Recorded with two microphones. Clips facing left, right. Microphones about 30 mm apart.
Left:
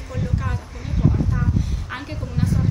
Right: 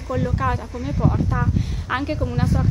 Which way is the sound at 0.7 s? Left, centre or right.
Centre.